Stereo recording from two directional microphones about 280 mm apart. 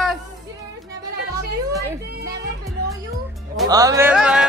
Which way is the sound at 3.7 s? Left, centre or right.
Centre.